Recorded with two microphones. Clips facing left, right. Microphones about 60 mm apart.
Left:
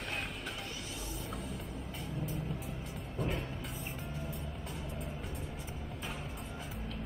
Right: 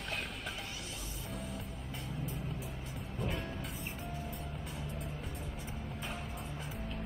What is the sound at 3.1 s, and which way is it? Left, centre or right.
Music, centre.